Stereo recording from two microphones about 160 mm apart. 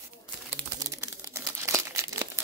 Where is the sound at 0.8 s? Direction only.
20° right (ahead or behind).